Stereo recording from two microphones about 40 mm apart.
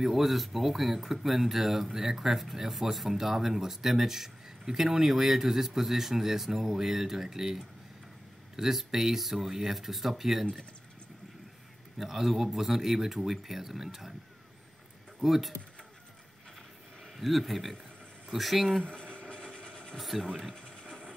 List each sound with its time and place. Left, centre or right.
0.0 s speech: centre
12.0 s speech: centre
15.2 s speech: centre
17.0 s speech: centre
18.9 s a sound: left
19.3 s mechanisms: left
20.0 s speech: centre
20.5 s a sound: left